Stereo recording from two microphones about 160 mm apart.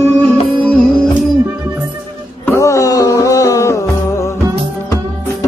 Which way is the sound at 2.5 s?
20° left (ahead or behind).